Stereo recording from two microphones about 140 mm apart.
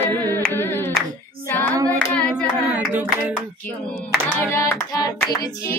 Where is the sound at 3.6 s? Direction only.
10° left (ahead or behind).